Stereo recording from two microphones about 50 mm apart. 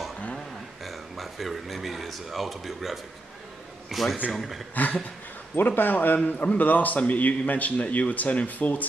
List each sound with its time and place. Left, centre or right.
0.8 s speech: centre
4.7 s a man's voice: left